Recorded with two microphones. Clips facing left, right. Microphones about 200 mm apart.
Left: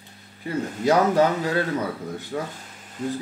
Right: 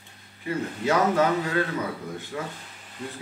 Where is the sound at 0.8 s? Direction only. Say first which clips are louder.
Left 4 dB; 35° left (ahead or behind).